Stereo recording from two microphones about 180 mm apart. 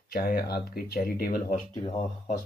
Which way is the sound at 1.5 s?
40° left (ahead or behind).